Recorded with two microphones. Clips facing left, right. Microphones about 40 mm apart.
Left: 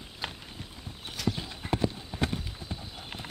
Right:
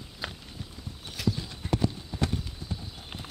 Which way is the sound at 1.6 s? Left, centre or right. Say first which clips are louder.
Right 1 dB; centre.